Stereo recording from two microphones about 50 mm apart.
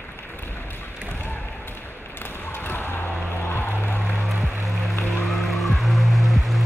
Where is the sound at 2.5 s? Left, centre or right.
Left.